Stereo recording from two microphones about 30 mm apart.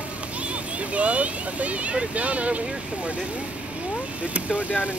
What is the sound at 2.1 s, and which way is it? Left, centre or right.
Speech, right.